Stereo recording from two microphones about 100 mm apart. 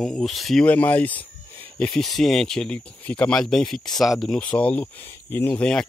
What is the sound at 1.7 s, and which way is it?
Speech, 10° left (ahead or behind).